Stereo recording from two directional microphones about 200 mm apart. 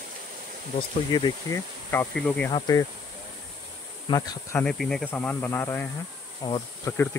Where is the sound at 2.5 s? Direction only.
20° left (ahead or behind).